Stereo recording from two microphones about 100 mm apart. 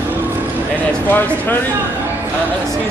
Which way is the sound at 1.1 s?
20° left (ahead or behind).